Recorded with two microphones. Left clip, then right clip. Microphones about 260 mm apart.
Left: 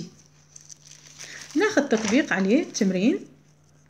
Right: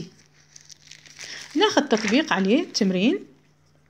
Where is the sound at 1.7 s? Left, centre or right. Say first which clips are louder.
Right 1 dB; right.